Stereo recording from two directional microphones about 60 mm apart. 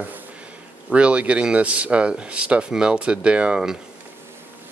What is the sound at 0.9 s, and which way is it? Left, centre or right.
Speech, right.